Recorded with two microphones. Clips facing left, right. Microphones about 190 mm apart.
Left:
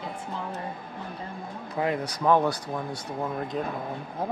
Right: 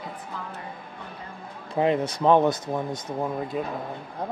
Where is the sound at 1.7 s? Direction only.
25° right (ahead or behind).